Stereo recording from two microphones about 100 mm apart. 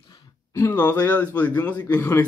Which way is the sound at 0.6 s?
20° left (ahead or behind).